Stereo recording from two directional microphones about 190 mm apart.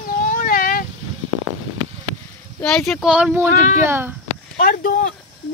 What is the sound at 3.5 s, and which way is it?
Speech, 40° left (ahead or behind).